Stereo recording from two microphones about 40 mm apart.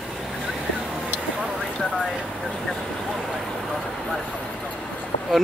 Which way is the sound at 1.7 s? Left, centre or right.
Centre.